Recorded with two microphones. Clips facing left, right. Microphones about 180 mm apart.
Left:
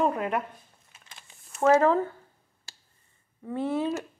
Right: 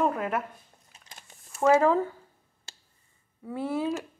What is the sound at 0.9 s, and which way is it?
Biting, 40° right (ahead or behind).